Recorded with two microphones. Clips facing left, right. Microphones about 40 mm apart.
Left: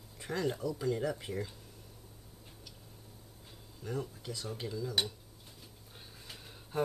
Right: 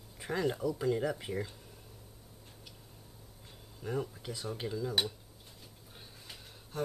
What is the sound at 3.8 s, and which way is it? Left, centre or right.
Speech, centre.